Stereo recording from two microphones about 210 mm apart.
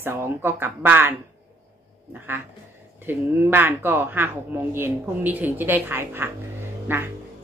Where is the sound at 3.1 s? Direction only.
10° right (ahead or behind).